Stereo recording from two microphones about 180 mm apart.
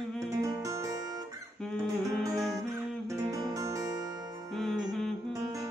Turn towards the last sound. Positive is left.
turn(degrees=0)  # may be behind; listen again after turning